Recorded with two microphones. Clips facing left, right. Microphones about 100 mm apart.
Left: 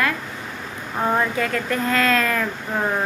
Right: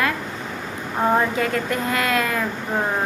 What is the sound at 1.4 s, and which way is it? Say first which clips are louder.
Speech: even; 25° right (ahead or behind).